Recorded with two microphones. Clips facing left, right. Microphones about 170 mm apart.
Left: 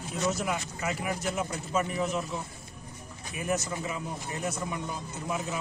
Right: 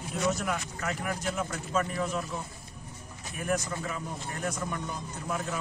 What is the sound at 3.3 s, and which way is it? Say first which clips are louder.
Speech: even; 5° left (ahead or behind).